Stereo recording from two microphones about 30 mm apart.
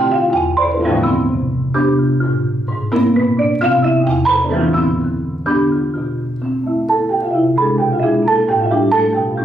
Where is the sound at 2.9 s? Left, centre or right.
Centre.